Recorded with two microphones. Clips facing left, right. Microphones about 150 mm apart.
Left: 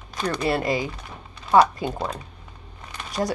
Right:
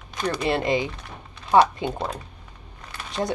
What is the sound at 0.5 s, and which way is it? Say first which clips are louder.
Speech: right 1 dB; 25° right (ahead or behind).